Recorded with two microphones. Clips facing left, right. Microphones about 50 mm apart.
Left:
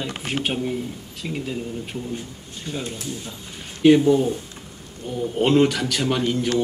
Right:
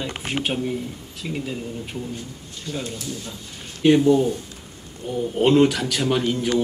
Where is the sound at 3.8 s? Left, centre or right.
Centre.